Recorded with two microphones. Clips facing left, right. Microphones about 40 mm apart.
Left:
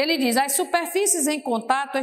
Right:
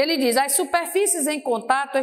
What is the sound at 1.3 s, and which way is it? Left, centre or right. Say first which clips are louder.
Speech: right 1 dB; left.